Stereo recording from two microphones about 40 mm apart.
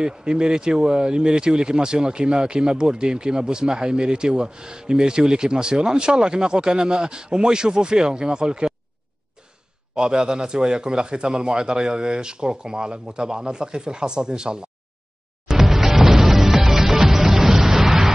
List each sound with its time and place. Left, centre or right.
0.0 s speech: right
9.9 s speech: right
15.4 s music: centre